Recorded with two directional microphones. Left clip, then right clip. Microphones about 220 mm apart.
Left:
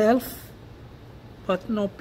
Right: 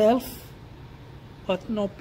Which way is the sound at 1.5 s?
15° left (ahead or behind).